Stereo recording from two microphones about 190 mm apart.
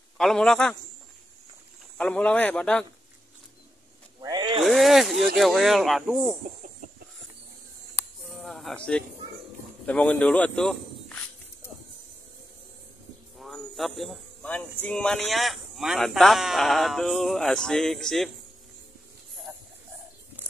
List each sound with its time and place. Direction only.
0.2 s speech: centre (ahead or behind)
2.0 s a man's voice: 5° left (ahead or behind)
4.2 s a sound: 20° right (ahead or behind)
4.6 s speech: centre (ahead or behind)
8.3 s music: centre (ahead or behind)
9.8 s speech: 5° left (ahead or behind)
13.4 s speech: centre (ahead or behind)
19.5 s a sound: 10° right (ahead or behind)